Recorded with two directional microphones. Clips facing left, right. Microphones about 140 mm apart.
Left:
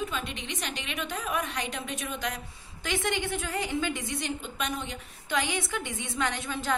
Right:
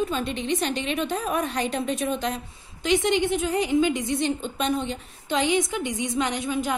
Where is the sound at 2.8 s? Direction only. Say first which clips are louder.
Right 8 dB; 20° right (ahead or behind).